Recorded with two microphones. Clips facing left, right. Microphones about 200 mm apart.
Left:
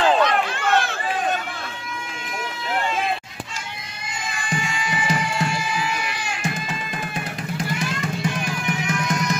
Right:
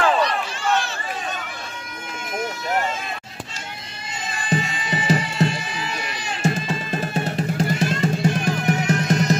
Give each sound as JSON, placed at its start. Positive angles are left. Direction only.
{"t": 0.2, "sound": "run", "side_deg": 55}
{"t": 2.7, "sound": "vehicle", "side_deg": -45}
{"t": 4.4, "sound": "music", "side_deg": -35}
{"t": 9.1, "sound": "music", "side_deg": -30}